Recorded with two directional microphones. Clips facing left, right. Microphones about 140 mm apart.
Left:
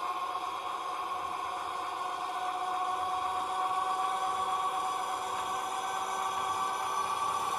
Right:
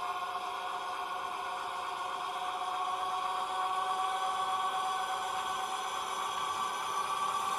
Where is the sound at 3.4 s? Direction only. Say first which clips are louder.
Left 2 dB; 35° left (ahead or behind).